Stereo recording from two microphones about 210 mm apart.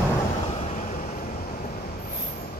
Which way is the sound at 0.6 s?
35° left (ahead or behind).